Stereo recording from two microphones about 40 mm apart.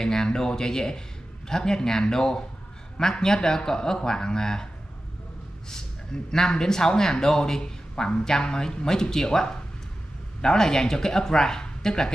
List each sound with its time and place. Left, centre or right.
0.0 s a sound: centre
1.5 s speech: centre
6.3 s speech: centre